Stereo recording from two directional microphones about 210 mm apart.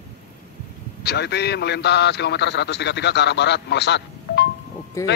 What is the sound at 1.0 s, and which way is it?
Speech, 50° left (ahead or behind).